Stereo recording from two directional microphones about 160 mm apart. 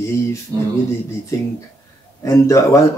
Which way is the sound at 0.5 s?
25° right (ahead or behind).